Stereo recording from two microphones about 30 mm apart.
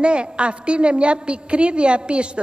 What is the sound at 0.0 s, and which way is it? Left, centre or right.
A woman's voice, right.